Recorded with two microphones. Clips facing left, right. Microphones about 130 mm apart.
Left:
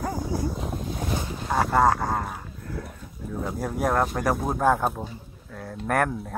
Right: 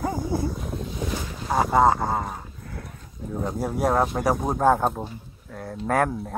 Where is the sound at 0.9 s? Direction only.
45° left (ahead or behind).